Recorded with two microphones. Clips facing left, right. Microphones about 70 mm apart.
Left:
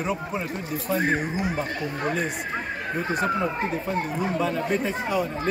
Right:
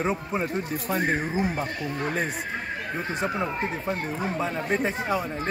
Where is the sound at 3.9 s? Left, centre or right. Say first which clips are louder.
Left 2 dB; right.